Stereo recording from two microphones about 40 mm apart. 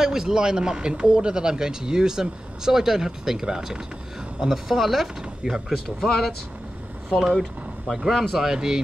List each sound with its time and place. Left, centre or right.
0.0 s speech: centre
7.3 s speech: centre
8.5 s speech: centre